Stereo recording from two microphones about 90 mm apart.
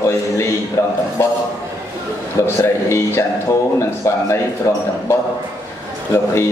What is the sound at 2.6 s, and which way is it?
Speech, 30° left (ahead or behind).